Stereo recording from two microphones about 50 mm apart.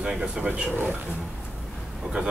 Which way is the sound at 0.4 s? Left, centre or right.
Right.